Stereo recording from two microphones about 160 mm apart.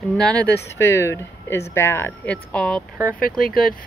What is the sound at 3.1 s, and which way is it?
Speech, 60° left (ahead or behind).